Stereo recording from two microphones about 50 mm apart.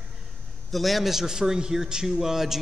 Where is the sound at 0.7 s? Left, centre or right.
Centre.